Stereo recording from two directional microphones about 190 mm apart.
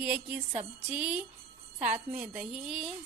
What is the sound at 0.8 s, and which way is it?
A woman's voice, 5° right (ahead or behind).